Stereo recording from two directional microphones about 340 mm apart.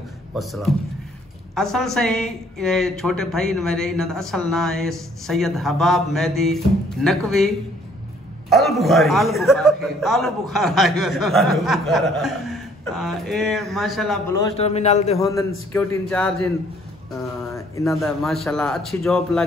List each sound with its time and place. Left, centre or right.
0.3 s a man's voice: centre
14.4 s a man's voice: centre
15.1 s a man's voice: centre
17.7 s a man's voice: centre